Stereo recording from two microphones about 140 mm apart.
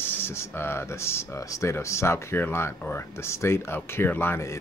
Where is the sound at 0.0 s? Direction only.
15° left (ahead or behind).